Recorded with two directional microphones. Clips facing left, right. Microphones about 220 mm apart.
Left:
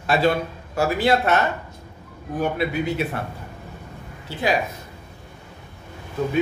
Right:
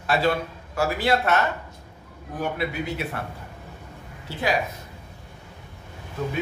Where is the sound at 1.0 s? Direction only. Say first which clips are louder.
Left 3 dB; 20° left (ahead or behind).